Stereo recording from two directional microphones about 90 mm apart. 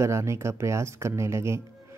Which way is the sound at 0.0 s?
30° right (ahead or behind).